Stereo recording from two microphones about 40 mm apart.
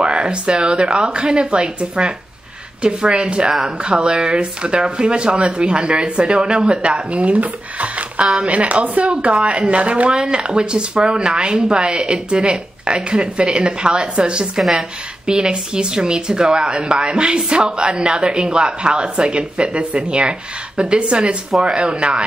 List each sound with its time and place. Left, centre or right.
0.0 s speech: right
14.6 s a woman's voice: centre
15.2 s speech: right